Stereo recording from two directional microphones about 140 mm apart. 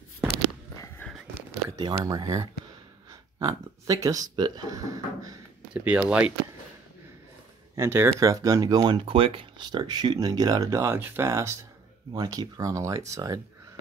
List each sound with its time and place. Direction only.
1.0 s a sound: 15° left (ahead or behind)
1.8 s speech: 30° right (ahead or behind)
5.7 s speech: 10° right (ahead or behind)
7.7 s speech: 20° right (ahead or behind)